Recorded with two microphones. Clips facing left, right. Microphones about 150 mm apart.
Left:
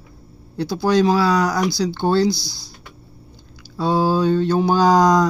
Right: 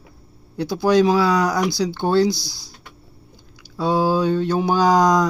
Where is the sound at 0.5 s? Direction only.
15° right (ahead or behind).